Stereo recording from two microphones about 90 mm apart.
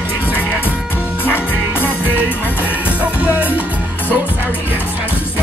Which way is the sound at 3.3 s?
20° right (ahead or behind).